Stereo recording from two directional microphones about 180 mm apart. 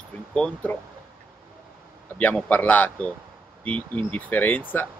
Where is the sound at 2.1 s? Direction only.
5° left (ahead or behind).